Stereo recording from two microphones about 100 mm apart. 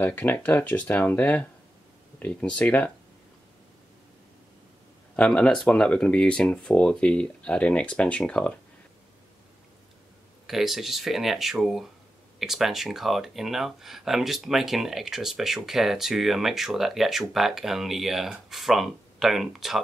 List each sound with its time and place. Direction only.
0.0 s speech: 20° left (ahead or behind)
5.1 s speech: 10° left (ahead or behind)
10.4 s speech: 5° right (ahead or behind)